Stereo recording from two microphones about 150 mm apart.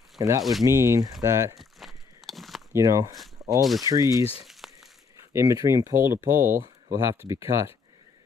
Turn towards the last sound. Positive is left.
turn(degrees=-20)  # may be behind; listen again after turning